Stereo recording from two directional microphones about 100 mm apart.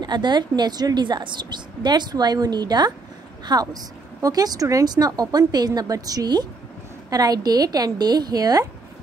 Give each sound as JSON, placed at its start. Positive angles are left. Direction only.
{"t": 0.0, "sound": "a woman's voice", "side_deg": -45}